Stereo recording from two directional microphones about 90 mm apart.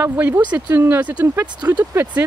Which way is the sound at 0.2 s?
20° right (ahead or behind).